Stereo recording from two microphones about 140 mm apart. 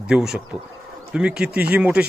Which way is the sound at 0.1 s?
5° right (ahead or behind).